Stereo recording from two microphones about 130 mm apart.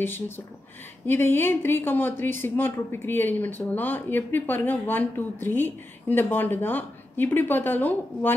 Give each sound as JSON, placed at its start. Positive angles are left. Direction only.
{"t": 1.0, "sound": "speech", "side_deg": 15}